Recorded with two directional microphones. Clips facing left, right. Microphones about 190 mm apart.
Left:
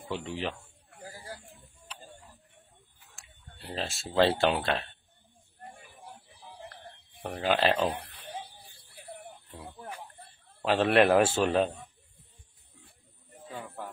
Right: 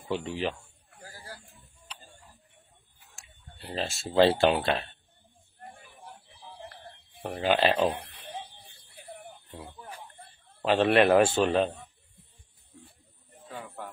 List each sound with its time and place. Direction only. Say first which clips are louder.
0.1 s speech: right 3 dB; centre (ahead or behind)
3.6 s speech: right 2 dB; centre (ahead or behind)
6.8 s a sound: right 2 dB; 10° right (ahead or behind)
7.4 s speech: right 2 dB; centre (ahead or behind)
10.6 s speech: right 1 dB; centre (ahead or behind)
12.8 s a sound: right 4 dB; 10° left (ahead or behind)